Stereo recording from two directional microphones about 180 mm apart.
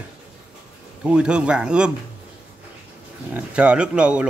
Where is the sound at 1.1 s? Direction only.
5° right (ahead or behind).